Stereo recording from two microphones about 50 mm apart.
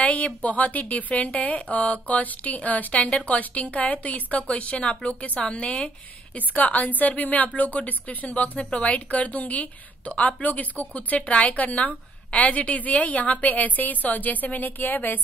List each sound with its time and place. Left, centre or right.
0.0 s a woman's voice: left